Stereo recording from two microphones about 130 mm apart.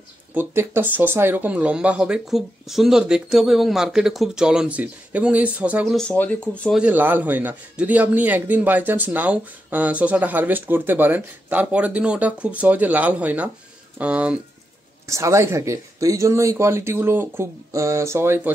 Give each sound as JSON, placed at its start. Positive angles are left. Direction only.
{"t": 0.3, "sound": "a man's voice", "side_deg": -15}
{"t": 5.9, "sound": "speech", "side_deg": 10}
{"t": 6.7, "sound": "a man's voice", "side_deg": -10}
{"t": 15.0, "sound": "speech", "side_deg": -20}